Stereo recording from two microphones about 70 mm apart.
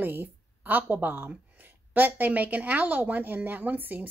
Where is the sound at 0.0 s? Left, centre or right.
Right.